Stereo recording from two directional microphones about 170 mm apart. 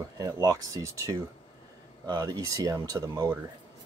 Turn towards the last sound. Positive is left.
turn(degrees=-20)  # may be behind; listen again after turning